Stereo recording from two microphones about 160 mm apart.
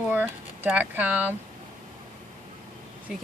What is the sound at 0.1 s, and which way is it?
Speech, 10° right (ahead or behind).